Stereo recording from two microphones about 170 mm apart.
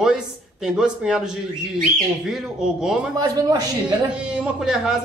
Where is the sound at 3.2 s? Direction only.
25° right (ahead or behind).